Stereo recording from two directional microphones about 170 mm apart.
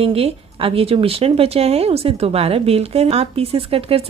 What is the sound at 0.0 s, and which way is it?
A woman's voice, 35° right (ahead or behind).